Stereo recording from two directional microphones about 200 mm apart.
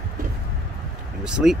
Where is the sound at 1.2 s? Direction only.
5° right (ahead or behind).